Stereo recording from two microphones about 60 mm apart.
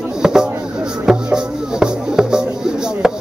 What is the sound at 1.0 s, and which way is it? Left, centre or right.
Music, centre.